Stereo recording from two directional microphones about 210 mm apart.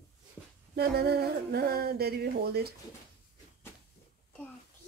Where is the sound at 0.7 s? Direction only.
50° right (ahead or behind).